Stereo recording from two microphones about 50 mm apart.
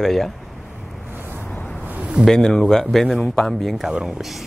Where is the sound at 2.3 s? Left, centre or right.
Centre.